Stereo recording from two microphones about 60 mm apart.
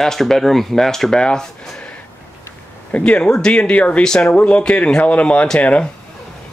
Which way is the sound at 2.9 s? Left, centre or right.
Centre.